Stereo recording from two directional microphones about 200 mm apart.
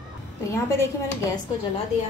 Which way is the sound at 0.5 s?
15° left (ahead or behind).